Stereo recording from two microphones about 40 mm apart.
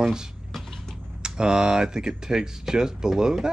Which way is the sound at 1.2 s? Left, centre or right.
Right.